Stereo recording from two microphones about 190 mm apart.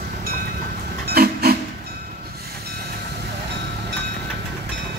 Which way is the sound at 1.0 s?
55° right (ahead or behind).